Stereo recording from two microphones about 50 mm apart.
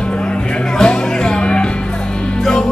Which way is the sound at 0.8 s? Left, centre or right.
Centre.